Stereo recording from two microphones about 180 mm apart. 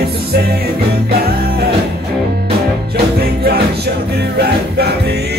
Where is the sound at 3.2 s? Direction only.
65° right (ahead or behind).